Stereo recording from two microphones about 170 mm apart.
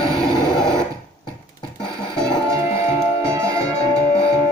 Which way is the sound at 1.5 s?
30° left (ahead or behind).